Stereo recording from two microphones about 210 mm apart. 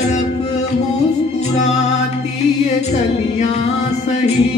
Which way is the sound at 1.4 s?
30° left (ahead or behind).